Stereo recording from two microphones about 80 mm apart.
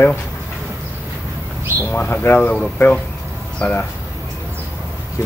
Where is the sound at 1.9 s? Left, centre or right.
Left.